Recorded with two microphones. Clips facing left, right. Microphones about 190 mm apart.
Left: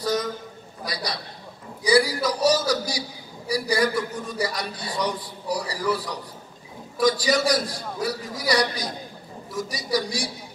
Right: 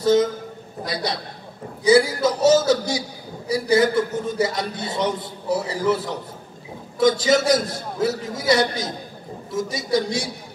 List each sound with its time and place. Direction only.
0.0 s a man's voice: 25° right (ahead or behind)